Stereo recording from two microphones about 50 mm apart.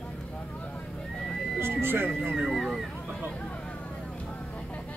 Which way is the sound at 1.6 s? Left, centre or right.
Right.